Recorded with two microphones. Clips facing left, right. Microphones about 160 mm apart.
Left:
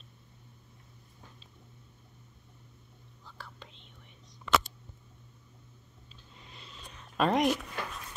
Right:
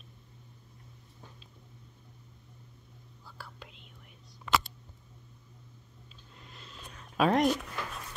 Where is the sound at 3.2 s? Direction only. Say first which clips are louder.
Right 1 dB; 5° right (ahead or behind).